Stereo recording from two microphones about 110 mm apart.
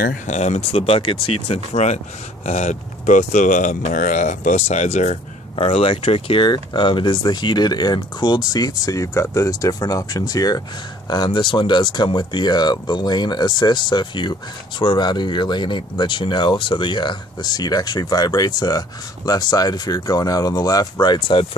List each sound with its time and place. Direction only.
0.3 s speech: 90° left
0.7 s speech: 60° left (ahead or behind); by 2.0 s 80° left
2.4 s speech: 90° left; by 21.5 s 45° left (ahead or behind)